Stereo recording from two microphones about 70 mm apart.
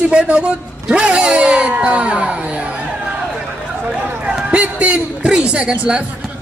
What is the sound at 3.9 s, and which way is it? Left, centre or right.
A man's voice, centre.